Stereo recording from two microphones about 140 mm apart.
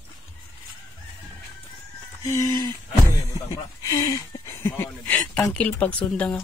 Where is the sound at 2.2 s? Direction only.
25° left (ahead or behind).